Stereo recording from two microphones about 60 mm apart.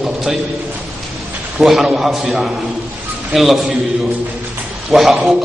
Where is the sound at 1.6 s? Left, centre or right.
Centre.